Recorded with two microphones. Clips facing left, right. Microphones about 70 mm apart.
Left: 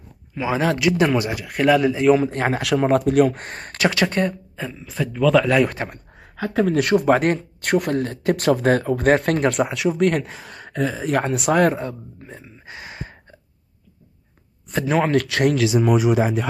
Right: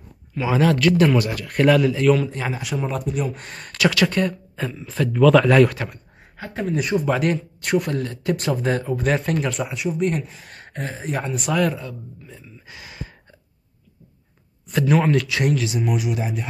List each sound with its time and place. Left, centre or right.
0.3 s a sound: centre
0.6 s speech: centre
2.2 s speech: left
2.6 s speech: left
3.3 s speech: left
4.6 s speech: centre
5.7 s speech: left
6.3 s speech: left
7.1 s speech: left
11.2 s speech: left
14.7 s speech: left
15.5 s speech: left